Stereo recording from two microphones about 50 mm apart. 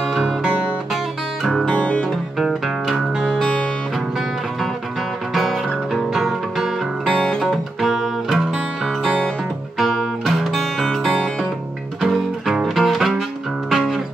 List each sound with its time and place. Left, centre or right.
0.0 s music: centre
1.4 s music: centre
1.7 s music: left
2.3 s music: centre
5.3 s music: centre
7.1 s music: centre
7.8 s music: centre
9.8 s guitar: centre
12.0 s music: centre